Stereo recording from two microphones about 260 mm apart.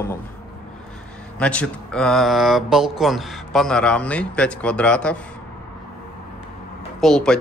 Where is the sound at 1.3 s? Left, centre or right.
Centre.